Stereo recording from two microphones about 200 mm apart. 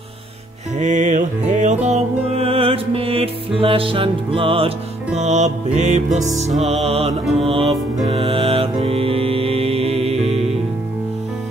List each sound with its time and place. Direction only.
0.7 s music: 35° right (ahead or behind)